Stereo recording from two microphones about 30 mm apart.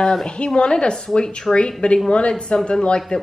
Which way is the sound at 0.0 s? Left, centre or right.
Centre.